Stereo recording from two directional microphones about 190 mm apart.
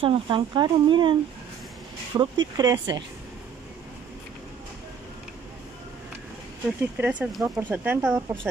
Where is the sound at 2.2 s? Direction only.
20° right (ahead or behind).